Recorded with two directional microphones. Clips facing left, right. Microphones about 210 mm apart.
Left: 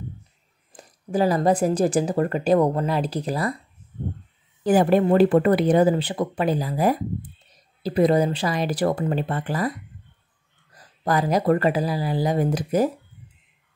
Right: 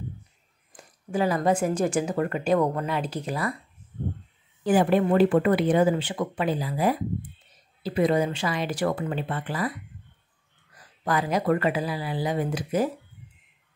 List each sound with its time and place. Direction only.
0.7 s speech: 35° left (ahead or behind)
4.6 s speech: 40° left (ahead or behind)
10.7 s speech: 40° left (ahead or behind)